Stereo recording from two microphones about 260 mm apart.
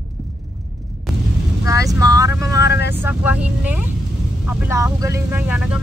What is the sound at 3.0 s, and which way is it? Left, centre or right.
Speech, centre.